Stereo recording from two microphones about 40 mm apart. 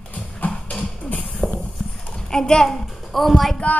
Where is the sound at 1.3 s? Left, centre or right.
Left.